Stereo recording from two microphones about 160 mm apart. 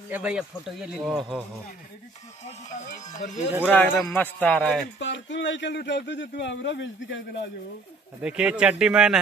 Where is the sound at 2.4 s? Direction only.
45° left (ahead or behind).